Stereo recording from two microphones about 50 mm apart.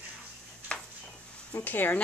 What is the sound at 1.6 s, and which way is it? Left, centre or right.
Speech, left.